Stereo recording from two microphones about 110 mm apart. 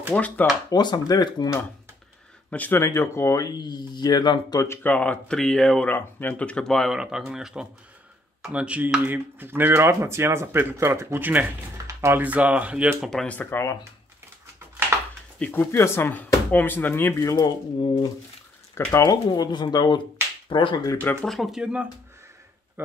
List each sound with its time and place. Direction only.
0.1 s speech: 10° left (ahead or behind)
0.7 s speech: 35° left (ahead or behind)
2.5 s speech: 15° left (ahead or behind)
2.8 s speech: 25° left (ahead or behind)
4.8 s speech: 10° left (ahead or behind)
5.9 s speech: 15° left (ahead or behind); by 13.1 s 10° right (ahead or behind)
13.1 s speech: 5° left (ahead or behind)
13.4 s speech: 20° left (ahead or behind)
15.3 s speech: 15° left (ahead or behind)
17.2 s speech: 30° left (ahead or behind)
17.7 s speech: 50° left (ahead or behind)
18.9 s speech: 35° left (ahead or behind)
21.0 s speech: 10° left (ahead or behind)
21.3 s speech: centre (ahead or behind)